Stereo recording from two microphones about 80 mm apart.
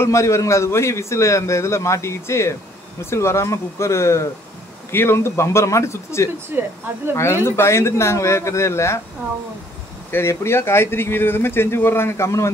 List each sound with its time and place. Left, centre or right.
0.0 s a man's voice: left
6.5 s speech: right
7.4 s a man's voice: left
10.1 s speech: left